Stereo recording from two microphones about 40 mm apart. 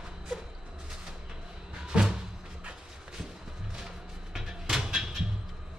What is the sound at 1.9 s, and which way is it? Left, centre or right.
Music, right.